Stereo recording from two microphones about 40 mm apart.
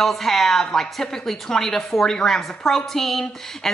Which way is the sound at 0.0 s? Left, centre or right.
Centre.